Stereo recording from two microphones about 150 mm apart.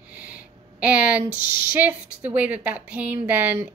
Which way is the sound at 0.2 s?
10° right (ahead or behind).